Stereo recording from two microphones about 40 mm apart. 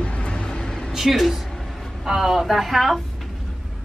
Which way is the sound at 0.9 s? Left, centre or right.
Centre.